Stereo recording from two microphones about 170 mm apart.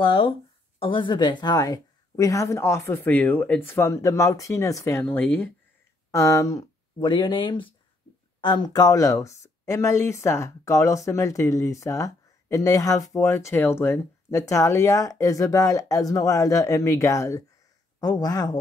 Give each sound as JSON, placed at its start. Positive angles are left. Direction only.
{"t": 0.0, "sound": "speech", "side_deg": 30}